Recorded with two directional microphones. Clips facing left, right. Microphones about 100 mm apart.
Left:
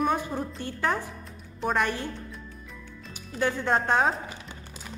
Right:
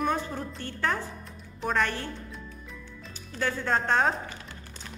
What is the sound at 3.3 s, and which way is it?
Speech, 15° left (ahead or behind).